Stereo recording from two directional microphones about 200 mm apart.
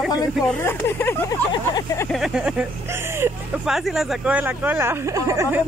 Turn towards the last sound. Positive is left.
turn(degrees=-15)  # may be behind; listen again after turning